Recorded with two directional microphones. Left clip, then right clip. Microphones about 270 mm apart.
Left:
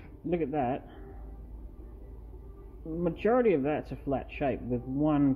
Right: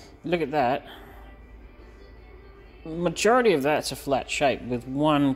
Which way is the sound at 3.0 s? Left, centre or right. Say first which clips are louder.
Right 6 dB; centre.